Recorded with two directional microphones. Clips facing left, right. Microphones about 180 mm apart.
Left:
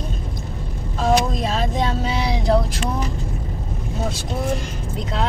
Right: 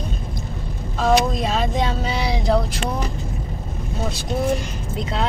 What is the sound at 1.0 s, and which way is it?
Vehicle, centre (ahead or behind).